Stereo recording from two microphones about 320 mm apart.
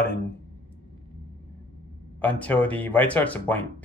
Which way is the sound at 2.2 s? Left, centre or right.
Centre.